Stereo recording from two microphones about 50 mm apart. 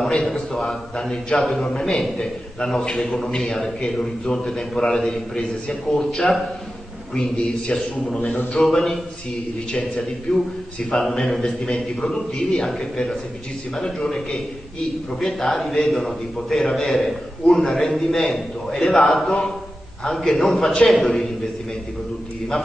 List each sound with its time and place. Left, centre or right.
0.0 s a man's voice: centre
8.0 s a man's voice: centre